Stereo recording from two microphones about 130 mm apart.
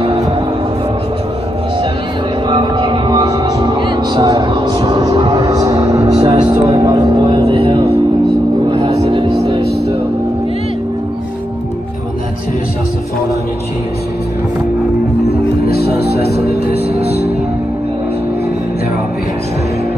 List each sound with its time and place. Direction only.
2.5 s music: 35° right (ahead or behind)
6.0 s a sound: 35° right (ahead or behind)
6.9 s music: 30° right (ahead or behind)